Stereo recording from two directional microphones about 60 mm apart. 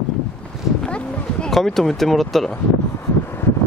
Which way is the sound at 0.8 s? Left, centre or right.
Left.